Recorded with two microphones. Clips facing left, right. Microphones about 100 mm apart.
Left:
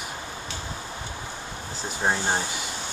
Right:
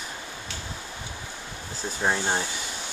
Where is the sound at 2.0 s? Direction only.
20° left (ahead or behind).